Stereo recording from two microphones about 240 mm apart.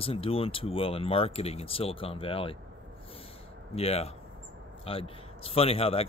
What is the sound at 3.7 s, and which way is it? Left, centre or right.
Speech, left.